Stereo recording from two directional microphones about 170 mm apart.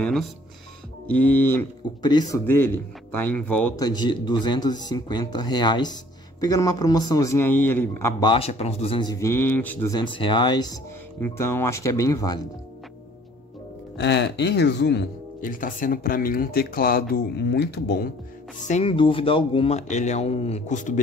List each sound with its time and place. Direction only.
0.0 s a man's voice: centre (ahead or behind)
2.0 s speech: 25° left (ahead or behind)
2.4 s a man's voice: 10° left (ahead or behind)
3.7 s speech: 25° left (ahead or behind)
8.2 s speech: 35° left (ahead or behind)
9.1 s a man's voice: 15° left (ahead or behind)
9.9 s speech: 30° left (ahead or behind)
11.1 s a man's voice: 15° left (ahead or behind)
13.9 s speech: 90° left
15.4 s speech: 50° left (ahead or behind)
18.6 s speech: 40° left (ahead or behind)